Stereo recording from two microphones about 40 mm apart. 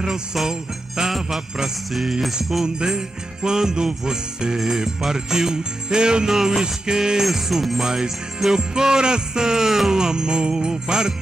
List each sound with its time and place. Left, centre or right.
0.0 s jingle bell: centre
2.6 s music: centre
7.2 s jingle bell: centre
7.8 s music: centre